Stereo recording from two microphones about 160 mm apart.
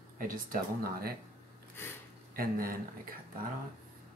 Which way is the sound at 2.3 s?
65° right (ahead or behind).